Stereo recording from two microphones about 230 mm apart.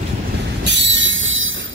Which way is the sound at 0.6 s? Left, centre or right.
Right.